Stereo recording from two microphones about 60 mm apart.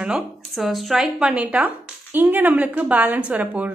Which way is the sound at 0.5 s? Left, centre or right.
Centre.